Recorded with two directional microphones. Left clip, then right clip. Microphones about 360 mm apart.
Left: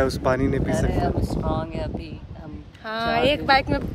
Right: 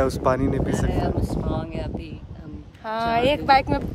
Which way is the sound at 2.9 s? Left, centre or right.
Right.